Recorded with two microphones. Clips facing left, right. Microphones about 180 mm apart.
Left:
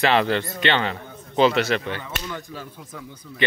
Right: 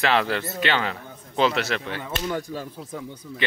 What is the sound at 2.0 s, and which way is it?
Speech, 35° right (ahead or behind).